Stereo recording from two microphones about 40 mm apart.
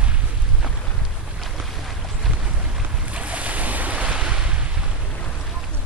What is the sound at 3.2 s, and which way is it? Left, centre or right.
Waves, right.